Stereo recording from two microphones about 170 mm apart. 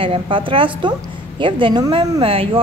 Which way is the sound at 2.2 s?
35° right (ahead or behind).